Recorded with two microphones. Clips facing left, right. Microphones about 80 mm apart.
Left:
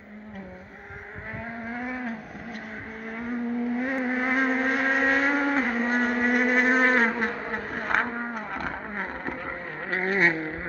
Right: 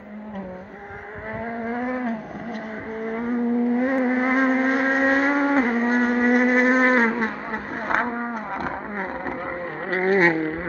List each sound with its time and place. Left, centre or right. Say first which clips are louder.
1.7 s a sound: right 6 dB; right
3.0 s vehicle: right 7 dB; right
7.1 s insect: right 3 dB; centre
8.6 s vehicle: right 4 dB; centre
9.8 s vehicle: right 5 dB; right